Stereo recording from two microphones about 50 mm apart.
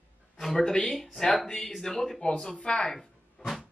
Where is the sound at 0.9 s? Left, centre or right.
Centre.